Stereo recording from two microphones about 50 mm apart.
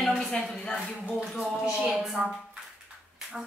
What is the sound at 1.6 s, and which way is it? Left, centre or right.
Speech, centre.